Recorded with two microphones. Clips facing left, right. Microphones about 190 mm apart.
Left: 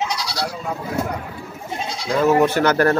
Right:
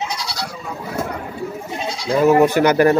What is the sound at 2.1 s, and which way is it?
Speech, 15° right (ahead or behind).